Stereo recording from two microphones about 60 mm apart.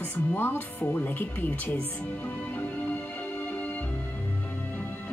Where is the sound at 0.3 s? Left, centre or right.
Left.